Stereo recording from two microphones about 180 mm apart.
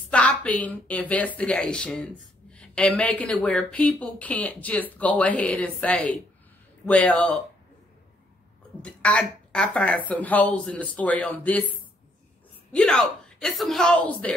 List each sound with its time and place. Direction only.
0.1 s speech: 5° left (ahead or behind)
8.8 s speech: 5° left (ahead or behind)
12.7 s speech: 5° left (ahead or behind)